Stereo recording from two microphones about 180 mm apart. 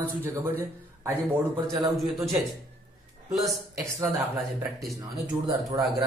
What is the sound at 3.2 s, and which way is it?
Speech, centre (ahead or behind).